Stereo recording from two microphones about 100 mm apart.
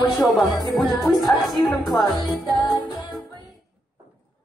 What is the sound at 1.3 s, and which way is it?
Speech, 20° left (ahead or behind).